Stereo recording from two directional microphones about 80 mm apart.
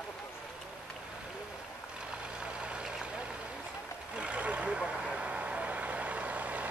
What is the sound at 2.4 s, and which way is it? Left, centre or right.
Vehicle, centre.